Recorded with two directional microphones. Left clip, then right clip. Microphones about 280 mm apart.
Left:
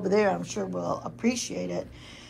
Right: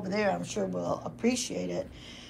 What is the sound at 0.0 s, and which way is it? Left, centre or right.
Speech, centre.